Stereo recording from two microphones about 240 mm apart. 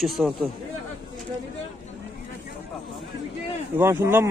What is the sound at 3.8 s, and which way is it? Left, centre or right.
Speech, centre.